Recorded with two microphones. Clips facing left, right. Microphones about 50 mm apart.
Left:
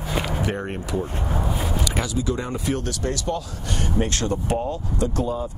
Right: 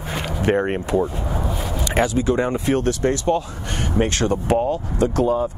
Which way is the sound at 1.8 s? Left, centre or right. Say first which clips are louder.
Right 10 dB; right.